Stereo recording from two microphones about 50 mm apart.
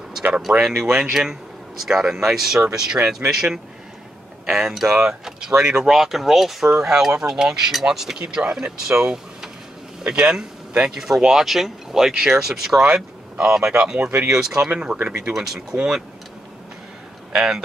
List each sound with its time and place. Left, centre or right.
0.5 s speech: centre
3.2 s speech: right
4.5 s speech: centre
12.8 s speech: centre
17.3 s speech: centre